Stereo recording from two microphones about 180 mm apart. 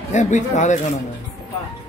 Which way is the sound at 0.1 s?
40° left (ahead or behind).